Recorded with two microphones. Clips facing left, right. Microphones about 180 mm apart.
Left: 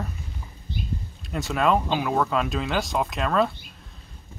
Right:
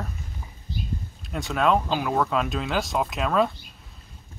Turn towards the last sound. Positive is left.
turn(degrees=0)  # may be behind; listen again after turning